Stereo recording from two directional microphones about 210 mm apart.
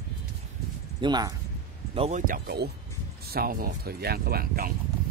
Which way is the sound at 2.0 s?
35° right (ahead or behind).